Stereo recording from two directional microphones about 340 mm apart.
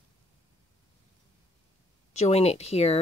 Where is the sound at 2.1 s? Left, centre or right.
Centre.